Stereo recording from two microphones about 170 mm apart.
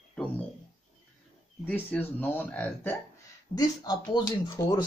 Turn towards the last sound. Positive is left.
turn(degrees=25)  # may be behind; listen again after turning